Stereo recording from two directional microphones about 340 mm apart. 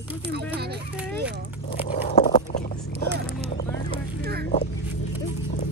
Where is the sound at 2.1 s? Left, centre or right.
Left.